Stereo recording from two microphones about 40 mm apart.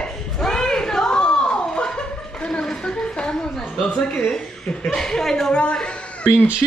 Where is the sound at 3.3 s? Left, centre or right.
Centre.